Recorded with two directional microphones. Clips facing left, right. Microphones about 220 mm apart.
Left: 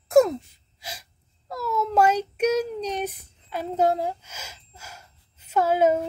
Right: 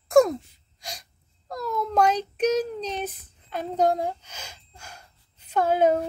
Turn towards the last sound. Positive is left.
turn(degrees=5)  # may be behind; listen again after turning